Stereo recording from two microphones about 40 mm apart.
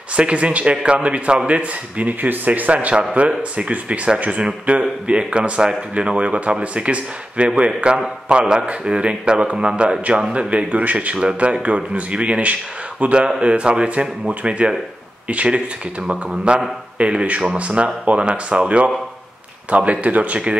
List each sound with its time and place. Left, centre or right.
0.1 s speech: right
2.2 s speech: right
10.5 s speech: right
13.4 s speech: right